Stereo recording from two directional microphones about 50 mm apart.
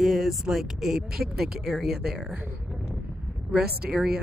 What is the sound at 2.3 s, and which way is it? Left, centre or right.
Speech, right.